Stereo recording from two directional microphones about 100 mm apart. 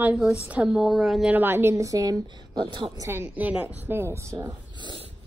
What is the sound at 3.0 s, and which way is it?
A woman's voice, 25° right (ahead or behind).